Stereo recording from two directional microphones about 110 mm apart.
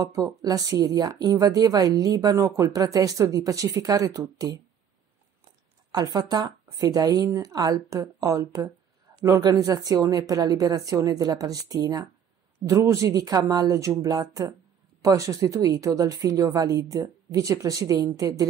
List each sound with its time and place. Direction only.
0.0 s speech: 35° right (ahead or behind)
5.9 s speech: 40° right (ahead or behind)